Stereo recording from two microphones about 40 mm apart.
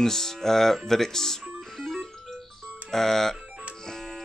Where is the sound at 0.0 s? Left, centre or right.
Centre.